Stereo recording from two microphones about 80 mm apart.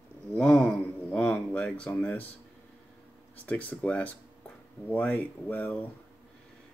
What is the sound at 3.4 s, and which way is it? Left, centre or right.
Speech, centre.